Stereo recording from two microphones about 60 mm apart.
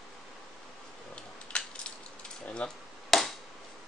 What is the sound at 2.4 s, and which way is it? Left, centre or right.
Speech, centre.